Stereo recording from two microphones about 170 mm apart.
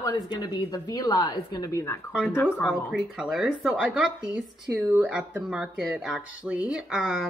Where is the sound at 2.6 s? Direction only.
5° right (ahead or behind).